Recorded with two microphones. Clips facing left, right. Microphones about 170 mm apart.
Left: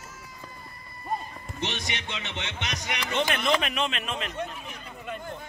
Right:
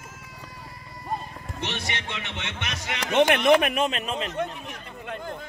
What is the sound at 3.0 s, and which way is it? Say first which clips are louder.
Speech: right 8 dB; 65° right (ahead or behind).